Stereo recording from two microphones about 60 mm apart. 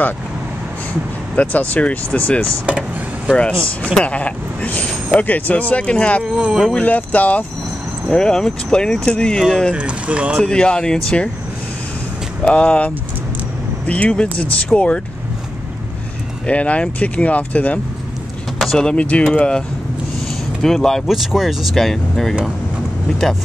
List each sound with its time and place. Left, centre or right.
1.3 s speech: left
3.6 s speech: centre
6.2 s speech: centre
6.7 s speech: left
8.1 s speech: centre
9.8 s speech: right
10.4 s speech: centre
12.4 s speech: centre
16.4 s speech: left
18.8 s speech: centre
20.6 s speech: centre
21.1 s speech: centre